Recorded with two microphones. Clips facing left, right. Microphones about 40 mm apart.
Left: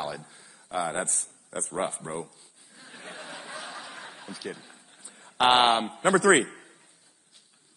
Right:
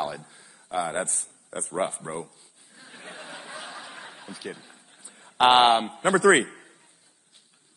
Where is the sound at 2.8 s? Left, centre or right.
Centre.